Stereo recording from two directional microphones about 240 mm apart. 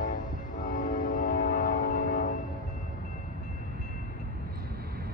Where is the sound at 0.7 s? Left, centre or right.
Left.